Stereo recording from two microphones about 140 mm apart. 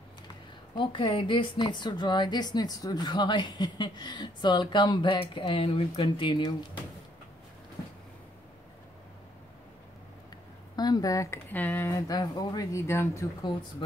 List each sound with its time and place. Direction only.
0.7 s a woman's voice: 35° left (ahead or behind)
10.8 s speech: 25° left (ahead or behind)
11.5 s speech: 10° left (ahead or behind)
12.1 s speech: 30° left (ahead or behind)
13.4 s a woman's voice: 30° left (ahead or behind)